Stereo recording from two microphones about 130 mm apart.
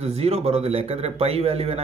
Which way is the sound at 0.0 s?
50° right (ahead or behind).